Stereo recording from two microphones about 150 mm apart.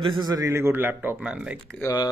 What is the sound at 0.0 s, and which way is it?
A man's voice, 30° right (ahead or behind).